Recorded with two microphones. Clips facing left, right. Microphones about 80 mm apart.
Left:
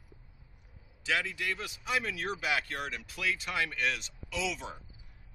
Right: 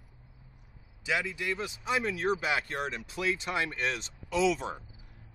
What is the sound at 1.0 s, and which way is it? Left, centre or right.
Speech, centre.